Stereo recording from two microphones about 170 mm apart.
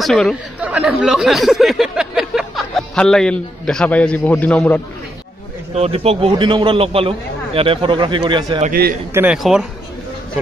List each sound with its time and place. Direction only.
0.0 s speech: centre (ahead or behind)
5.8 s a man's voice: 35° right (ahead or behind)
8.6 s a man's voice: 65° right (ahead or behind)
9.1 s speech: 10° right (ahead or behind)